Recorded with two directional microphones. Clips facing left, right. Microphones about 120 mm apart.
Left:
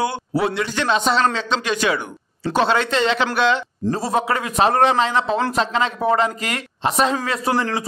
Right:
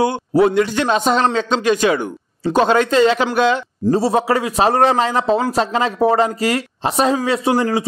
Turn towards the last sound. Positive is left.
turn(degrees=-20)  # may be behind; listen again after turning